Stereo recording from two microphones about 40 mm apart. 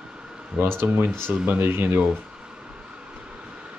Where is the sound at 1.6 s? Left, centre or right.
Right.